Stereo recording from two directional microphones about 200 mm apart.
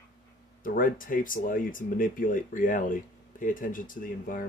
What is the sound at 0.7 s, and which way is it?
Speech, 45° left (ahead or behind).